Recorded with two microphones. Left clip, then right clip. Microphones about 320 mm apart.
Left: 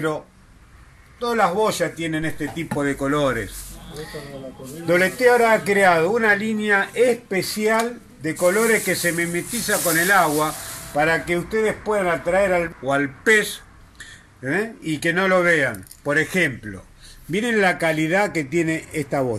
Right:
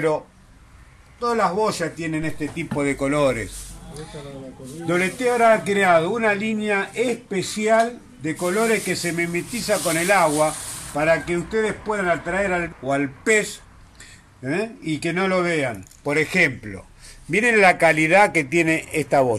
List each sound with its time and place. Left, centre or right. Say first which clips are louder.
1.2 s speech: left 1 dB; centre
4.8 s speech: left 5 dB; centre
17.6 s speech: right 4 dB; right
18.1 s a man's voice: right 4 dB; right